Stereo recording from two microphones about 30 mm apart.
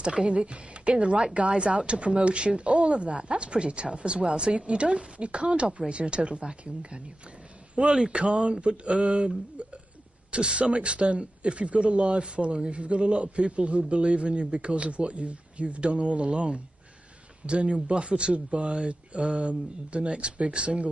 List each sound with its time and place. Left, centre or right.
0.0 s speech: right